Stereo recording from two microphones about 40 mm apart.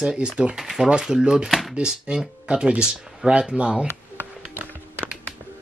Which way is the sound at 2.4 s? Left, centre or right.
Right.